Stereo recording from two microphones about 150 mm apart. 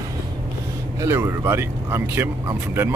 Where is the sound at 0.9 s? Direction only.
20° right (ahead or behind).